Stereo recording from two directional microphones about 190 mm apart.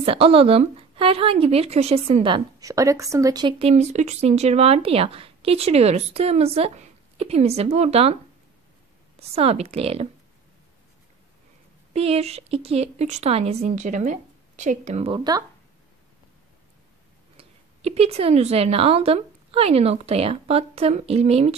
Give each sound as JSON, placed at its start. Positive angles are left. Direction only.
{"t": 0.0, "sound": "a woman's voice", "side_deg": -30}
{"t": 9.3, "sound": "a woman's voice", "side_deg": -30}
{"t": 11.9, "sound": "a woman's voice", "side_deg": -30}
{"t": 17.4, "sound": "speech", "side_deg": -30}